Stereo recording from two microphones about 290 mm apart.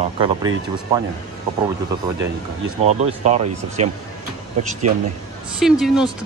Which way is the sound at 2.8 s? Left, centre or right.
Right.